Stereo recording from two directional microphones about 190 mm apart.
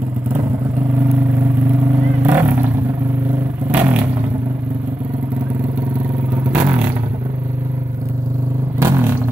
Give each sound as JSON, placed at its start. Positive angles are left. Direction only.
{"t": 2.2, "sound": "vehicle", "side_deg": -10}
{"t": 3.7, "sound": "vehicle", "side_deg": -10}
{"t": 6.5, "sound": "vehicle", "side_deg": -10}
{"t": 8.7, "sound": "vehicle", "side_deg": -15}